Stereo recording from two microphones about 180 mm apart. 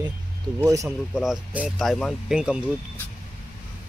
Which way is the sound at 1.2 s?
5° right (ahead or behind).